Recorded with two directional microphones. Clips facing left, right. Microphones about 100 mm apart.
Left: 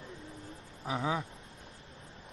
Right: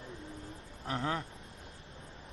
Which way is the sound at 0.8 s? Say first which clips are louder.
Left 2 dB; 5° left (ahead or behind).